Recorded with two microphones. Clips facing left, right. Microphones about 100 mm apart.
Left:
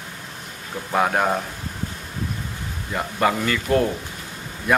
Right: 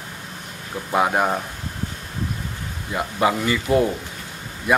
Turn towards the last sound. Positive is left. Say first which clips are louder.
# even
turn(degrees=-5)  # may be behind; listen again after turning